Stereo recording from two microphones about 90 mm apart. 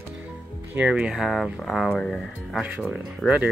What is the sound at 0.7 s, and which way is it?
Speech, 15° right (ahead or behind).